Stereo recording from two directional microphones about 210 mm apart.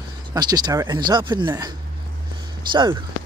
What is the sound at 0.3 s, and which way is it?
Speech, 20° right (ahead or behind).